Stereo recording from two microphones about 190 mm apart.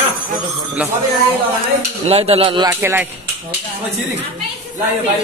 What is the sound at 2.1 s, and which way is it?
Speech, 30° right (ahead or behind).